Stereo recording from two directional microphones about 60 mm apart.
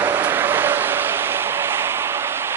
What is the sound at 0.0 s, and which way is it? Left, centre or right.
Vehicle, right.